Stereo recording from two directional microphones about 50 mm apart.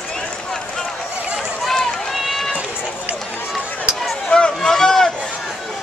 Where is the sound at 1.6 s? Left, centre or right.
Centre.